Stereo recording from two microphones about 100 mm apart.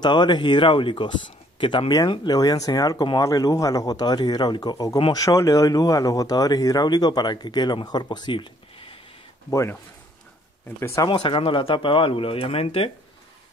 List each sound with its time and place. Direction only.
0.0 s speech: 45° left (ahead or behind)
2.0 s speech: 40° left (ahead or behind); by 8.9 s 60° left (ahead or behind)
9.5 s speech: 30° left (ahead or behind)
10.8 s speech: 25° left (ahead or behind)
11.1 s speech: 60° left (ahead or behind); by 12.9 s 90° left